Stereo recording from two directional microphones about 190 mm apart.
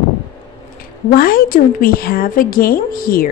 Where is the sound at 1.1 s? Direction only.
50° left (ahead or behind).